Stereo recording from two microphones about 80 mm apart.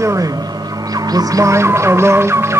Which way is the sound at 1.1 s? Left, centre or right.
Right.